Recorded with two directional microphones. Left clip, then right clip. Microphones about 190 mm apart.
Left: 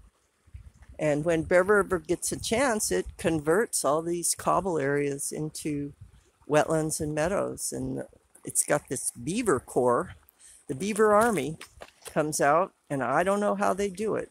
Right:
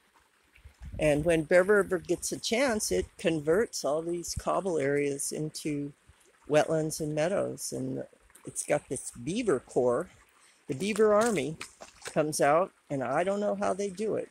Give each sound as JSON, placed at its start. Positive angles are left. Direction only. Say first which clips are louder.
{"t": 0.9, "sound": "speech", "louder": "even", "side_deg": 10}
{"t": 3.6, "sound": "speech", "louder": "left 4 dB", "side_deg": 30}
{"t": 10.8, "sound": "speech", "louder": "left 2 dB", "side_deg": 15}